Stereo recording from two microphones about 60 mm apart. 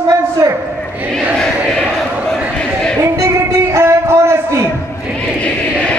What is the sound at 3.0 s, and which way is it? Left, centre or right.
Music, right.